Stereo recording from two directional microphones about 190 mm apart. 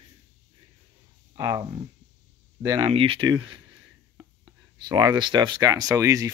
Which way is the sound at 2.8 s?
30° right (ahead or behind).